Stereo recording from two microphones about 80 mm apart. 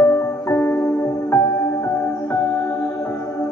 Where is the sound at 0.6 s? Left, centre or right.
Left.